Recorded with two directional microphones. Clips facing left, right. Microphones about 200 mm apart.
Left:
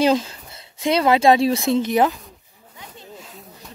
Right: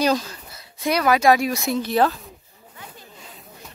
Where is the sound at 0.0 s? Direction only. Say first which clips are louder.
Left 3 dB; 25° left (ahead or behind).